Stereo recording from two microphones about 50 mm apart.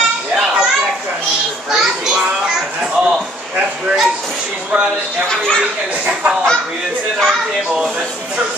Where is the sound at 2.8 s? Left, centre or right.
Centre.